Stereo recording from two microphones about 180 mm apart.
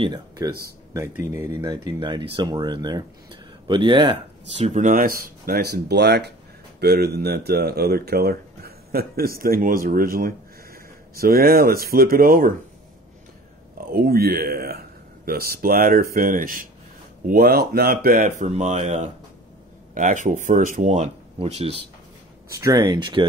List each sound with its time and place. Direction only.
0.0 s speech: 25° right (ahead or behind); by 12.5 s 50° right (ahead or behind)
13.9 s speech: 60° right (ahead or behind)
18.5 s speech: 40° right (ahead or behind)
22.5 s speech: 20° right (ahead or behind)